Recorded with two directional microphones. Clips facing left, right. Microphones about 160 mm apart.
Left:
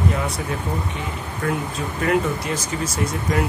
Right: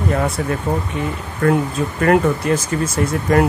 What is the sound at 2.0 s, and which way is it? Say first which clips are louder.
Speech: right 6 dB; 55° right (ahead or behind).